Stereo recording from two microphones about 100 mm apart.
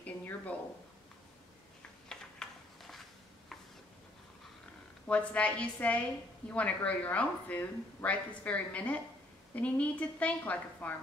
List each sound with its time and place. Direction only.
0.0 s speech: 15° left (ahead or behind)
2.0 s a sound: 5° left (ahead or behind)
5.0 s speech: 15° left (ahead or behind)